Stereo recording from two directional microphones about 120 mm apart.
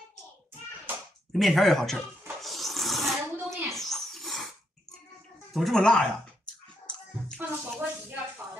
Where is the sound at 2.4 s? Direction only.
Centre (ahead or behind).